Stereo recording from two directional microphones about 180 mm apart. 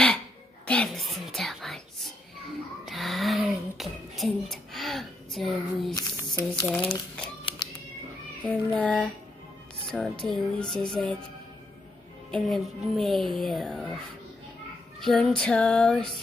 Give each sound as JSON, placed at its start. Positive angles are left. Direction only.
{"t": 0.7, "sound": "whispering", "side_deg": 5}
{"t": 2.8, "sound": "a sound", "side_deg": 0}
{"t": 5.9, "sound": "a sound", "side_deg": 20}
{"t": 6.7, "sound": "speech", "side_deg": 10}
{"t": 7.4, "sound": "cat", "side_deg": 25}
{"t": 8.7, "sound": "speech", "side_deg": 5}
{"t": 12.3, "sound": "speech", "side_deg": 0}
{"t": 15.0, "sound": "speech", "side_deg": 5}